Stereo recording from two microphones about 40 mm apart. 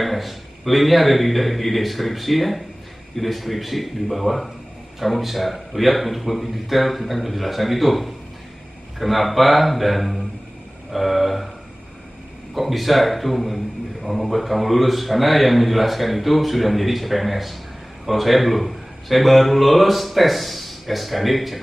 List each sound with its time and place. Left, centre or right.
0.0 s speech: centre
12.5 s speech: centre